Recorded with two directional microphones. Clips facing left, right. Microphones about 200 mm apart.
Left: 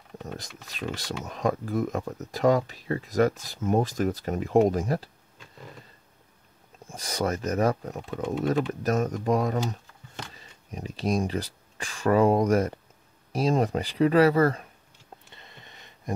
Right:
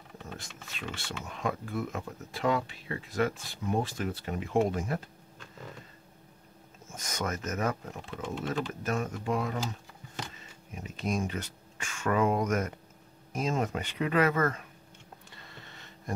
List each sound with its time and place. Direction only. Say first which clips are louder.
0.7 s speech: left 7 dB; 40° left (ahead or behind)
6.9 s speech: left 6 dB; 35° left (ahead or behind)
15.3 s a sound: even; 20° left (ahead or behind)